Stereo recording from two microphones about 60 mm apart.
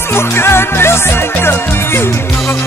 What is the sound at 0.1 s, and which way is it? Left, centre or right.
Music, left.